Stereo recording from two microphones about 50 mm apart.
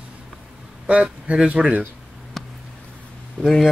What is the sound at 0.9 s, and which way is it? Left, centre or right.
Speech, right.